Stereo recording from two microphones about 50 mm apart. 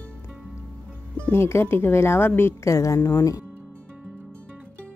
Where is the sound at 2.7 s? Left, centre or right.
Left.